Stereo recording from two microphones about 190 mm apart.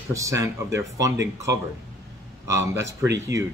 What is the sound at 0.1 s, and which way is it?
Speech, 15° right (ahead or behind).